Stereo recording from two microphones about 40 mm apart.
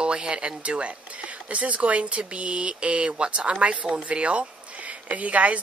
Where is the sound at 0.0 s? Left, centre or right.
Right.